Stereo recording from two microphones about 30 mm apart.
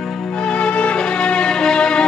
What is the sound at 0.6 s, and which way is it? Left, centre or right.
Music, left.